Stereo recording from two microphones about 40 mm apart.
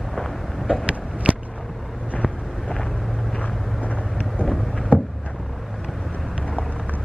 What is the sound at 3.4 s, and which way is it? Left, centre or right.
Vehicle, left.